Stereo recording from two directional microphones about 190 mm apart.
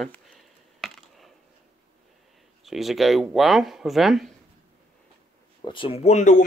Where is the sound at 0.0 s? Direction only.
Centre (ahead or behind).